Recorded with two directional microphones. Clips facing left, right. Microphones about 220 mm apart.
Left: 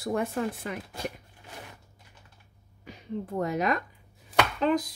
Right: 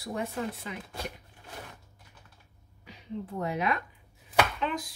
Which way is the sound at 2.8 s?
45° left (ahead or behind).